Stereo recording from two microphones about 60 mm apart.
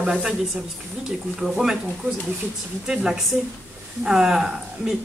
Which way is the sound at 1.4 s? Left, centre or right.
Centre.